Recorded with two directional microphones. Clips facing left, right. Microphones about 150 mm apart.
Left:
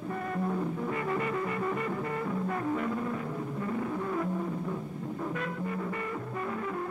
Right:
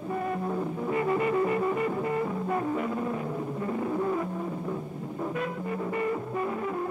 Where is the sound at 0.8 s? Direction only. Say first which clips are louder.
Right 5 dB; 20° right (ahead or behind).